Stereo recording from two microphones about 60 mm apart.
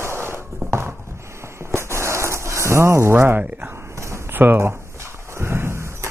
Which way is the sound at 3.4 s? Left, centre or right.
Right.